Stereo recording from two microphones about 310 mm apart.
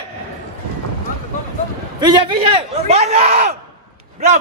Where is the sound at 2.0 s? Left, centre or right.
Centre.